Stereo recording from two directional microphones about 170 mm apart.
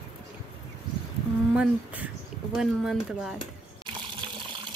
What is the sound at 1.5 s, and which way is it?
Speech, 5° right (ahead or behind).